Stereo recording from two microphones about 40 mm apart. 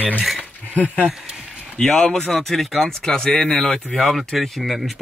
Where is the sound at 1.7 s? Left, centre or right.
Left.